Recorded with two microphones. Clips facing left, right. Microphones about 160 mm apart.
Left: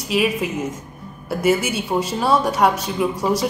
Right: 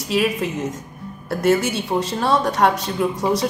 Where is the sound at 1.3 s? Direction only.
5° left (ahead or behind).